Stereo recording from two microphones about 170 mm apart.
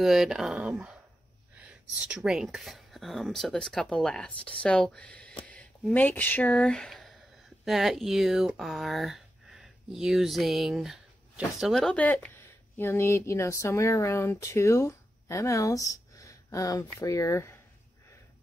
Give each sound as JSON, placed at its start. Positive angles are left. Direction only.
{"t": 0.0, "sound": "speech", "side_deg": 0}